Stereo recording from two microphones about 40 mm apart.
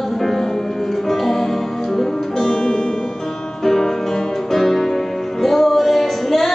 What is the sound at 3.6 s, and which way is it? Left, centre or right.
Music, centre.